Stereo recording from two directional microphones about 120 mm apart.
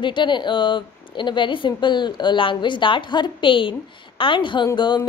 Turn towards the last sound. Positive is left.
turn(degrees=40)  # may be behind; listen again after turning